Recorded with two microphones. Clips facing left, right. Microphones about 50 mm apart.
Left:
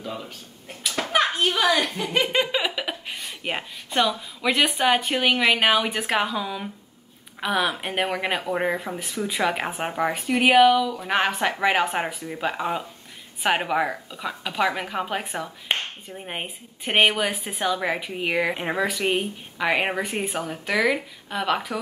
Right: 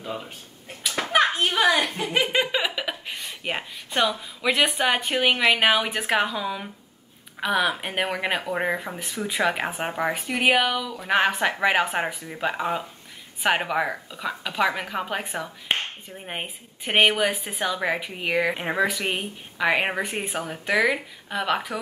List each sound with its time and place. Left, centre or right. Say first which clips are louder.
0.0 s speech: even; centre
1.1 s a sound: right 1 dB; centre
1.5 s a woman's voice: right 1 dB; right
2.3 s speech: even; centre